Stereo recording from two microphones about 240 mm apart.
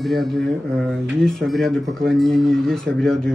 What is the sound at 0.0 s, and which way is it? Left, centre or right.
Speech, centre.